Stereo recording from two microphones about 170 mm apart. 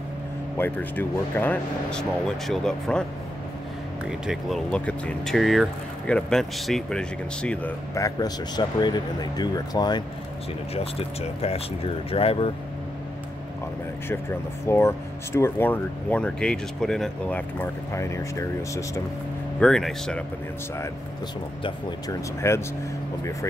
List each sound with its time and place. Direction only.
0.6 s speech: 10° left (ahead or behind)
4.1 s speech: centre (ahead or behind)
7.9 s a man's voice: 20° left (ahead or behind)
10.7 s speech: 35° left (ahead or behind)
14.7 s speech: 15° left (ahead or behind)
19.6 s speech: 5° left (ahead or behind)
21.6 s a man's voice: 20° left (ahead or behind)